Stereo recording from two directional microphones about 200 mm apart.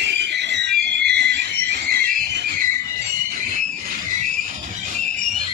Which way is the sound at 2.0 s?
45° right (ahead or behind).